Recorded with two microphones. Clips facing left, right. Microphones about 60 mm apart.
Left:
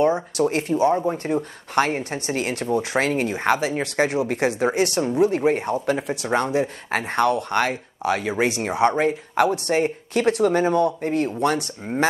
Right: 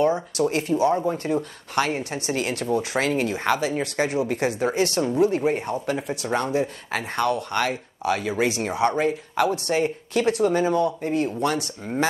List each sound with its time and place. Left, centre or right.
0.4 s speech: left
3.7 s speech: left